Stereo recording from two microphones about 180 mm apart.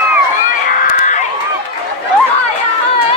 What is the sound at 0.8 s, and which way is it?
Crowd, 45° left (ahead or behind).